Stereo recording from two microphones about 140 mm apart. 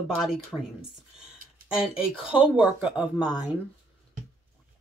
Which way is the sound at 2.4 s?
10° right (ahead or behind).